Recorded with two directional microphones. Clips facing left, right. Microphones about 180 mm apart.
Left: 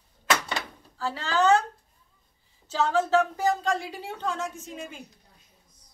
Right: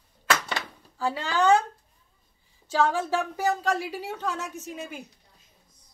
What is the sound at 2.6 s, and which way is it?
A woman's voice, 10° right (ahead or behind).